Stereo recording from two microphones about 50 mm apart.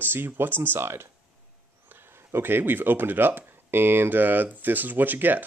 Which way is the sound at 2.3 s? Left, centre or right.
Right.